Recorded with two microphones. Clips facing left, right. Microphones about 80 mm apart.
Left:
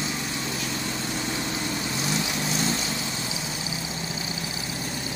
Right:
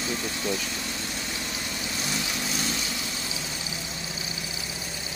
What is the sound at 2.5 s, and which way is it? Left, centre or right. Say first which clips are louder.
Vehicle: left 4 dB; left.